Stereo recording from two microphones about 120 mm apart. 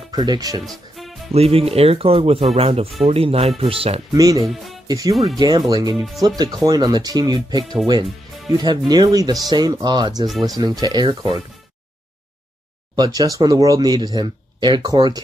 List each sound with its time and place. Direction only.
0.1 s speech: 35° right (ahead or behind)
0.7 s music: centre (ahead or behind)
1.3 s speech: 55° right (ahead or behind)
4.1 s speech: 30° right (ahead or behind)
12.9 s speech: 35° right (ahead or behind)